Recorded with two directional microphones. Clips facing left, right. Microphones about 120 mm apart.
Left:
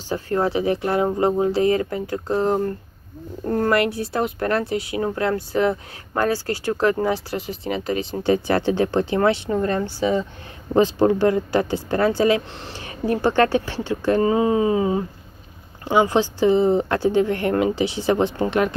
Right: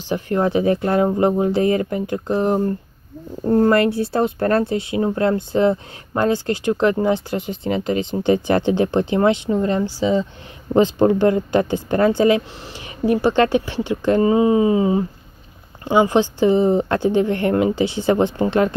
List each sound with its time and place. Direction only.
0.1 s speech: 20° right (ahead or behind)
0.5 s speech: 25° left (ahead or behind)
1.8 s speech: 25° right (ahead or behind)
12.5 s speech: 5° right (ahead or behind); by 18.8 s 30° right (ahead or behind)